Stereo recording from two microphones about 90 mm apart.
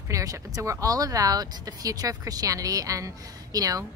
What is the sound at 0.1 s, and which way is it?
A woman's voice, 40° right (ahead or behind).